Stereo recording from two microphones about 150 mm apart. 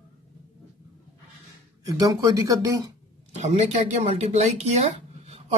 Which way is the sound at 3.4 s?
50° right (ahead or behind).